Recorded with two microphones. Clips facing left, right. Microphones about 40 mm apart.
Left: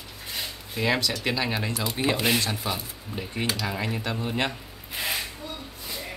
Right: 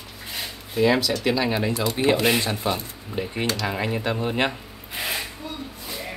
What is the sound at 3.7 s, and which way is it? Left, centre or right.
Speech, centre.